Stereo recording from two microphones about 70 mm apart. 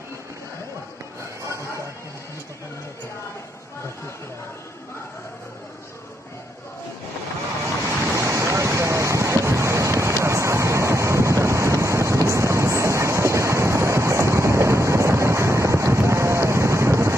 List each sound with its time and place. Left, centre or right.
7.6 s waves: right